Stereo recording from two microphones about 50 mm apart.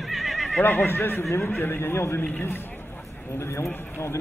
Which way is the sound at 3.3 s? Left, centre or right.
Left.